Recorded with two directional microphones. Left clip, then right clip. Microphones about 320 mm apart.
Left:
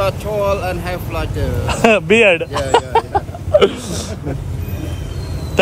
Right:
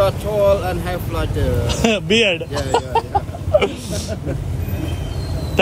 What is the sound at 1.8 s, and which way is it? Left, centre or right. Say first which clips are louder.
Speech: left 6 dB; centre.